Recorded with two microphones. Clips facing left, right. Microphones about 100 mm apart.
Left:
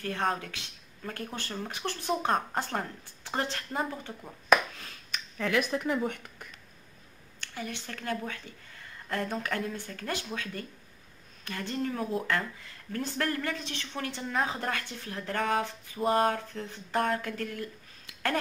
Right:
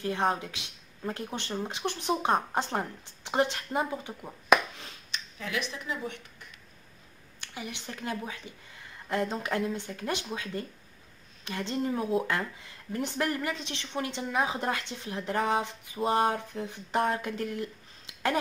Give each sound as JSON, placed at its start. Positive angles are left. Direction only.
{"t": 0.0, "sound": "speech", "side_deg": -20}
{"t": 5.1, "sound": "speech", "side_deg": 50}
{"t": 7.3, "sound": "speech", "side_deg": -15}